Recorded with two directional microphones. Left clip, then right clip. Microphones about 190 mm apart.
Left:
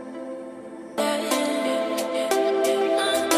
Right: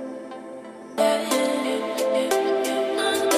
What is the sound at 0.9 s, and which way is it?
Music, centre (ahead or behind).